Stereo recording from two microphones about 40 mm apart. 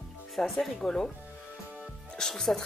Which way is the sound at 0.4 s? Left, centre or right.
Centre.